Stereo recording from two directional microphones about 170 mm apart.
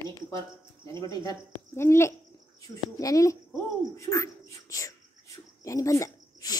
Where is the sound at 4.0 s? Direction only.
20° left (ahead or behind).